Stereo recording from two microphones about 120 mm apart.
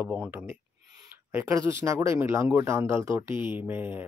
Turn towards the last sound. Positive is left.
turn(degrees=-15)  # may be behind; listen again after turning